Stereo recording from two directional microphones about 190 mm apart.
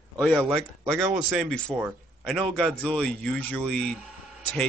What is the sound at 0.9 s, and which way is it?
Speech, 10° right (ahead or behind).